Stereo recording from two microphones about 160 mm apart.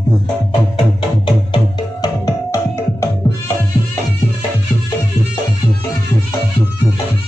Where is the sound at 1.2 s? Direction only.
30° left (ahead or behind).